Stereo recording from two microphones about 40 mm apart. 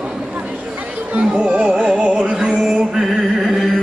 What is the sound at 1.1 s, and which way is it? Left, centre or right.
Music, right.